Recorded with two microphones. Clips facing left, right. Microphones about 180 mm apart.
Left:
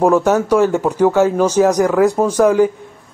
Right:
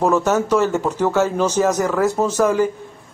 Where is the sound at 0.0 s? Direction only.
10° left (ahead or behind).